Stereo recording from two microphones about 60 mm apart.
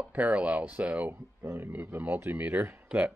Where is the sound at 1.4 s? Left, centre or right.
Right.